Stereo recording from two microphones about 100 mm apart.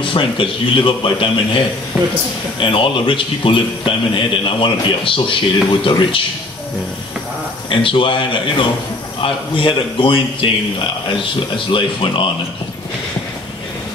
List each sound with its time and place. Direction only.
0.0 s a man's voice: 60° left (ahead or behind)
2.0 s speech: 10° right (ahead or behind)
2.6 s a man's voice: 60° left (ahead or behind)
7.7 s a man's voice: 60° left (ahead or behind)